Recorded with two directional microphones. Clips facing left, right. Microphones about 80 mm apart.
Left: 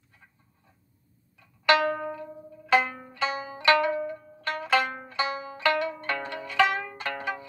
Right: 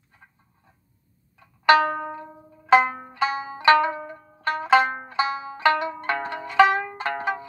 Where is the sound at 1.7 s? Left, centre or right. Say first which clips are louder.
Right 5 dB; right.